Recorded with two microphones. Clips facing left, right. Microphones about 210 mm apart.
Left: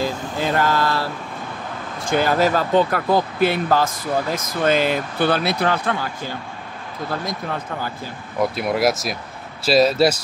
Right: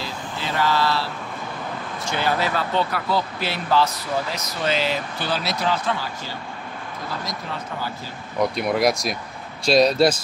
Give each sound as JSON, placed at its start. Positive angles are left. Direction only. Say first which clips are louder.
{"t": 0.0, "sound": "vehicle", "louder": "left 8 dB", "side_deg": 50}
{"t": 2.0, "sound": "speech", "louder": "left 6 dB", "side_deg": 45}
{"t": 8.4, "sound": "speech", "louder": "left 1 dB", "side_deg": 5}